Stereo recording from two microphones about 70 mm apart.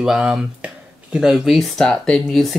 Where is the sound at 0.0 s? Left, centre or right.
Centre.